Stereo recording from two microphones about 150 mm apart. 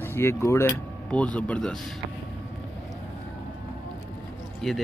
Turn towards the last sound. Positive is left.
turn(degrees=0)  # may be behind; listen again after turning